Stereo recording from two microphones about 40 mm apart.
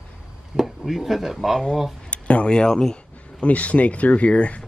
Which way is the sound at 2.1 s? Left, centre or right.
Left.